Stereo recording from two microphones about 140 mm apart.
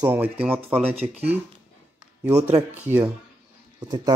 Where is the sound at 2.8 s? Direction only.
10° right (ahead or behind).